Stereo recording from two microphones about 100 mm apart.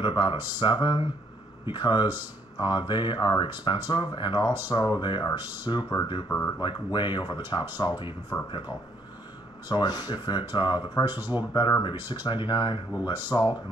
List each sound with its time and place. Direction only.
0.0 s speech: 50° left (ahead or behind)
6.2 s speech: 20° left (ahead or behind)
6.6 s speech: 50° left (ahead or behind)